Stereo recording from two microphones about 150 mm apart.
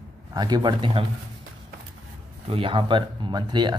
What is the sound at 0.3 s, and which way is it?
Speech, 30° right (ahead or behind).